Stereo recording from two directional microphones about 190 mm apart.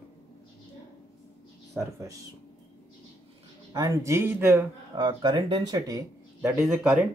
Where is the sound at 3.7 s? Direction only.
15° right (ahead or behind).